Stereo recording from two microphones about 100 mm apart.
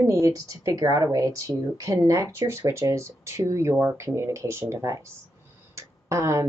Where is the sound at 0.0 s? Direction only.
35° right (ahead or behind).